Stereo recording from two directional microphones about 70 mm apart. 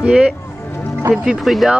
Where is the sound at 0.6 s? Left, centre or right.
Left.